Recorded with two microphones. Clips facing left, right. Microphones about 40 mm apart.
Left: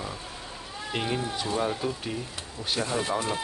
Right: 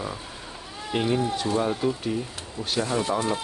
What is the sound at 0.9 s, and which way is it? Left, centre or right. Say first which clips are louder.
Speech: right 5 dB; centre.